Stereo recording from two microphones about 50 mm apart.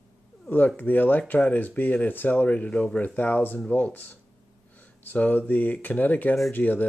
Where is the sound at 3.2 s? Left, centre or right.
Left.